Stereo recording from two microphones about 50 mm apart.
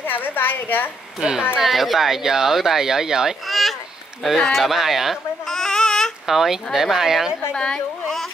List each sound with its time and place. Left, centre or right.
0.1 s a woman's voice: left
1.2 s speech: centre
1.6 s speech: centre
3.4 s a sound: centre
4.5 s speech: centre
5.5 s babbling: centre
6.2 s speech: centre
7.5 s a woman's voice: centre